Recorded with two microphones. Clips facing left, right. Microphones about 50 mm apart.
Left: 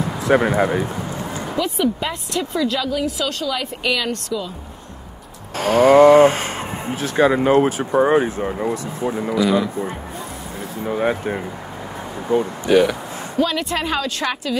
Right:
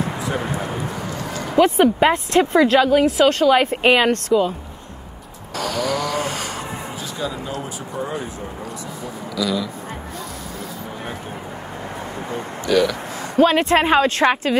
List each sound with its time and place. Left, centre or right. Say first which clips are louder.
0.3 s speech: left 13 dB; left
0.8 s a sound: even; left
1.6 s speech: right 7 dB; right
5.6 s speech: left 12 dB; left
7.0 s speech: left 14 dB; left
9.3 s a man's voice: left 4 dB; left
10.9 s speech: left 10 dB; left
12.3 s speech: left 6 dB; left
13.4 s speech: right 6 dB; right